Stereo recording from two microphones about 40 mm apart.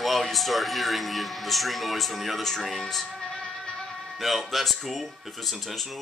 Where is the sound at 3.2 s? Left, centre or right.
Centre.